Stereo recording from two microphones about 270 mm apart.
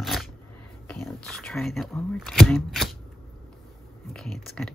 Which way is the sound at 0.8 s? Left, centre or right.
Centre.